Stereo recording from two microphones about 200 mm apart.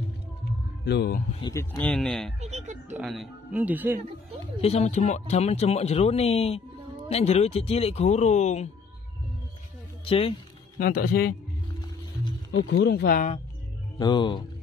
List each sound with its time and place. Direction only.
0.8 s speech: 55° left (ahead or behind)
1.4 s speech: 15° left (ahead or behind)
2.0 s speech: centre (ahead or behind)
2.4 s speech: 35° right (ahead or behind)
3.0 s speech: centre (ahead or behind)
4.6 s speech: 30° left (ahead or behind)
10.0 s speech: 25° left (ahead or behind)
10.8 s speech: 45° left (ahead or behind)
12.6 s speech: 60° left (ahead or behind)
13.9 s speech: 20° left (ahead or behind)